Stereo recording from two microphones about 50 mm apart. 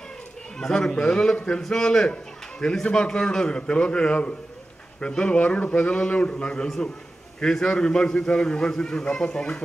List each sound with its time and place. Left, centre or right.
0.6 s a man's voice: centre